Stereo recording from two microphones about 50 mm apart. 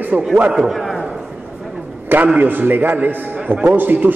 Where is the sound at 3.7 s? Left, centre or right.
Right.